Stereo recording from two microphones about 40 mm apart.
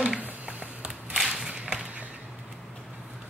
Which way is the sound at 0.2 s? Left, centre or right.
Right.